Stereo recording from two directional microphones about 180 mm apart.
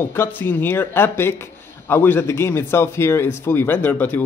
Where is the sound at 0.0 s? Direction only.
10° left (ahead or behind).